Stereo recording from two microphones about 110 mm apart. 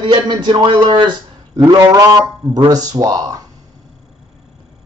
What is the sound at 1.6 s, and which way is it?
Speech, 35° right (ahead or behind).